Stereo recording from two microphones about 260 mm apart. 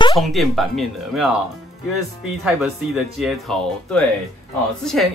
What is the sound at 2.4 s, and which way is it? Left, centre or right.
Speech, centre.